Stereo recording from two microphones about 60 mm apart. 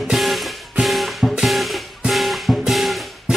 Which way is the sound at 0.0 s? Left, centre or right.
Centre.